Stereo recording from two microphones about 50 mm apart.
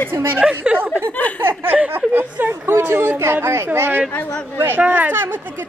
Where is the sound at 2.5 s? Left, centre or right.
Right.